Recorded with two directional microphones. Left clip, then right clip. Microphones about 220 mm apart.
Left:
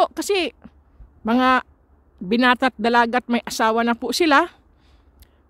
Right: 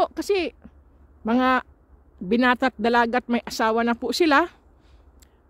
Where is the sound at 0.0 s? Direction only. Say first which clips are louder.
Left 3 dB; 15° left (ahead or behind).